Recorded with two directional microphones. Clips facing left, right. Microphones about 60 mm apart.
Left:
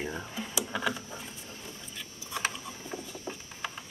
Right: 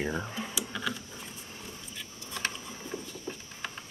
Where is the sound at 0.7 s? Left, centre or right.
Centre.